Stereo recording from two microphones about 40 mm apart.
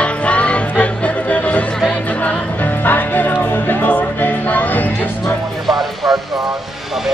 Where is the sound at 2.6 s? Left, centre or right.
Left.